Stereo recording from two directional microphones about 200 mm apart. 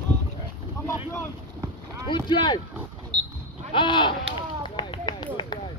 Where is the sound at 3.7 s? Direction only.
25° left (ahead or behind).